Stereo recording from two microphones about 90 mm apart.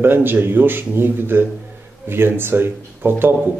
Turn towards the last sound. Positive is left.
turn(degrees=-25)  # may be behind; listen again after turning